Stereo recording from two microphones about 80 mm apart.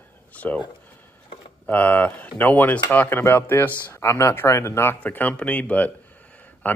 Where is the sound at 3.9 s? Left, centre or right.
Left.